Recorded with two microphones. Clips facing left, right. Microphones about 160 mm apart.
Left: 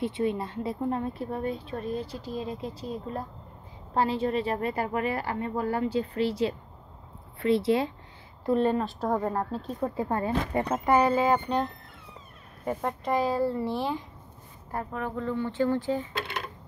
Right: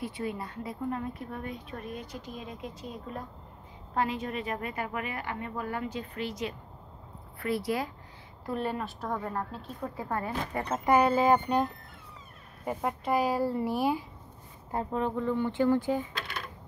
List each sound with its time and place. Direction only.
0.0 s a woman's voice: 25° left (ahead or behind)
9.0 s a woman's voice: 35° left (ahead or behind)
11.3 s speech: 10° right (ahead or behind)
14.7 s speech: 25° right (ahead or behind)